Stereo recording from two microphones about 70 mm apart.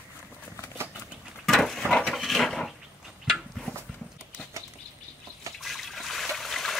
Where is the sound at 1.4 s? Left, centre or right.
Centre.